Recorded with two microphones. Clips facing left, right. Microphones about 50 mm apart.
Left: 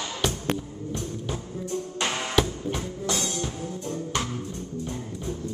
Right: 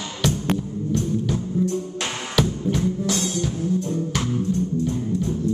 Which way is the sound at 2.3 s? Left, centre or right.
Centre.